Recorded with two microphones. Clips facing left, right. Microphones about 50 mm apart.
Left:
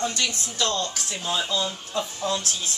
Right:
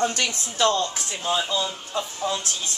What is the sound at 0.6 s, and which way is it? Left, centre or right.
Speech, centre.